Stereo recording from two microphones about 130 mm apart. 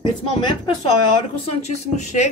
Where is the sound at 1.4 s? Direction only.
60° left (ahead or behind).